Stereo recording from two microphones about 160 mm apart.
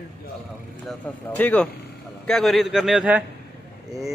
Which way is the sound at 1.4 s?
10° left (ahead or behind).